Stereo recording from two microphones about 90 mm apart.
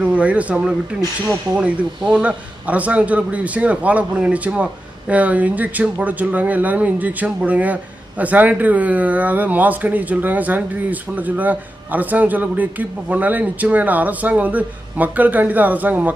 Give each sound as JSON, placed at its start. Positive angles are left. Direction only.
{"t": 0.0, "sound": "speech", "side_deg": -15}